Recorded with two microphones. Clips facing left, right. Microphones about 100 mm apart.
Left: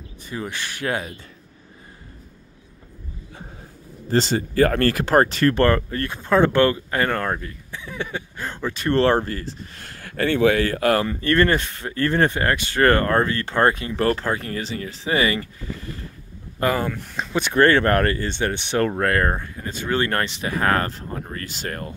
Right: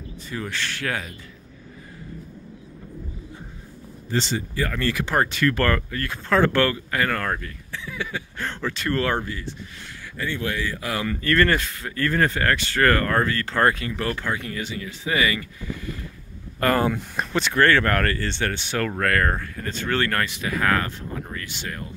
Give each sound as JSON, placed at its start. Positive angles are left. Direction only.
{"t": 0.3, "sound": "speech", "side_deg": 15}
{"t": 4.1, "sound": "speech", "side_deg": 45}
{"t": 6.2, "sound": "speech", "side_deg": 20}
{"t": 8.4, "sound": "speech", "side_deg": 15}
{"t": 8.8, "sound": "speech", "side_deg": 30}
{"t": 9.8, "sound": "speech", "side_deg": 60}
{"t": 11.1, "sound": "speech", "side_deg": 25}
{"t": 14.0, "sound": "speech", "side_deg": 35}
{"t": 16.6, "sound": "speech", "side_deg": 20}
{"t": 20.1, "sound": "speech", "side_deg": 25}